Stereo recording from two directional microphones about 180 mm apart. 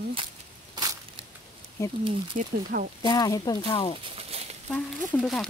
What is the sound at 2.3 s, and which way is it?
Speech, 50° right (ahead or behind).